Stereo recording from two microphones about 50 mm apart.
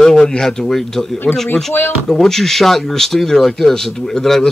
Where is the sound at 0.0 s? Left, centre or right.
Centre.